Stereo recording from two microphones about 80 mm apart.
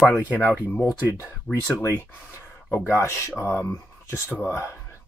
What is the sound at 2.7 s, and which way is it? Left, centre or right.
Speech, left.